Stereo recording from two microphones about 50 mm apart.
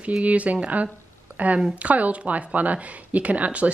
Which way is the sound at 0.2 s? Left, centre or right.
Right.